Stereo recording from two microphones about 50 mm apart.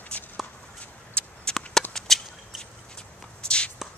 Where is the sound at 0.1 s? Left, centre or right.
Left.